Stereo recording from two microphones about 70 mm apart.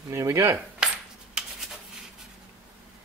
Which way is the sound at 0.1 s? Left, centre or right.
Right.